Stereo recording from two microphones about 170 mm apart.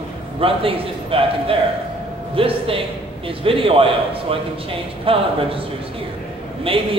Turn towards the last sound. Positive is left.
turn(degrees=-30)  # may be behind; listen again after turning